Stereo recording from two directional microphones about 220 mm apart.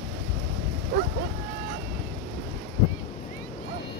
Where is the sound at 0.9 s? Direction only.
45° right (ahead or behind).